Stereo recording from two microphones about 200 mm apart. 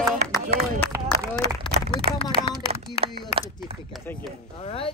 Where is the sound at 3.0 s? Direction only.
30° right (ahead or behind).